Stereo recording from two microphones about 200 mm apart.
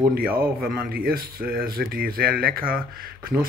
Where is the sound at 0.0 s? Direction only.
45° right (ahead or behind).